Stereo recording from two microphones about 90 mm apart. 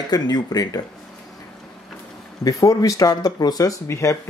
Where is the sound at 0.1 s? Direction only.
45° left (ahead or behind).